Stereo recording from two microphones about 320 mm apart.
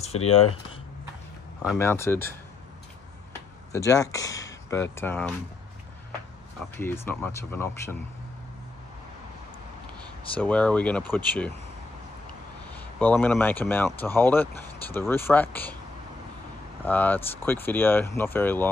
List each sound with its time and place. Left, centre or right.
0.0 s speech: centre
1.8 s speech: centre
3.7 s speech: centre
6.8 s speech: centre
10.3 s speech: centre
12.7 s speech: centre
16.8 s speech: centre